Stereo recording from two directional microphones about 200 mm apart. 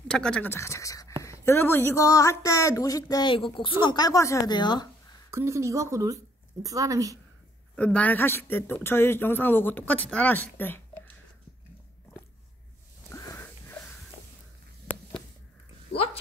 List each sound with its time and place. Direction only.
0.1 s a woman's voice: 5° left (ahead or behind); by 5.2 s 20° left (ahead or behind)
5.3 s speech: 15° right (ahead or behind)
7.7 s a woman's voice: 5° left (ahead or behind)
13.1 s wheeze: 15° left (ahead or behind)